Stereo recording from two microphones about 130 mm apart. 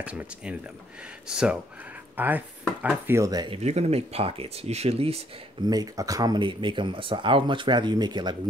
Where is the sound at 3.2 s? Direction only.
30° right (ahead or behind).